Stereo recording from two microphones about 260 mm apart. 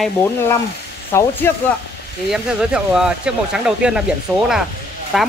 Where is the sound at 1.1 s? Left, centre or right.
Centre.